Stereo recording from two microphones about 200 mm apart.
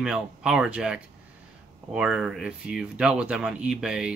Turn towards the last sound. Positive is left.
turn(degrees=-5)  # may be behind; listen again after turning